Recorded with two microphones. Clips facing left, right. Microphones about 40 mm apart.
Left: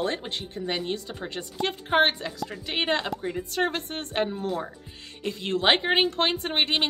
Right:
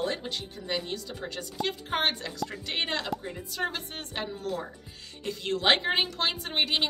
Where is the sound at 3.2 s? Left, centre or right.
Left.